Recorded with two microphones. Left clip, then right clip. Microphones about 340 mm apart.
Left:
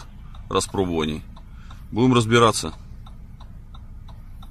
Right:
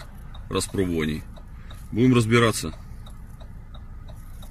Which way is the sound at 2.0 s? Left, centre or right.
Centre.